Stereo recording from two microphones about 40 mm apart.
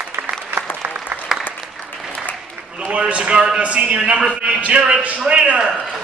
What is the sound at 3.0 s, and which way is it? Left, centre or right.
A man's voice, right.